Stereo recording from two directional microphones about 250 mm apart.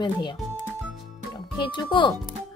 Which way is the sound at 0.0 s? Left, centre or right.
Centre.